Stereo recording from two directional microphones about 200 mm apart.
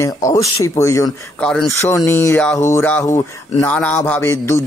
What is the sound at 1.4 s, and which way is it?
Speech, 5° left (ahead or behind).